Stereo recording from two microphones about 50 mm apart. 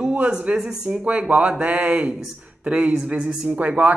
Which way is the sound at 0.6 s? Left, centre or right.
Right.